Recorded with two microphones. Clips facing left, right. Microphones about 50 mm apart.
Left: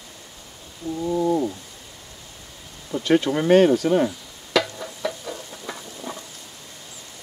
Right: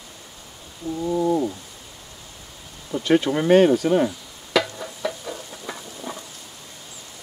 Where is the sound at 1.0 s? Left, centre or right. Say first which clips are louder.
Even; centre.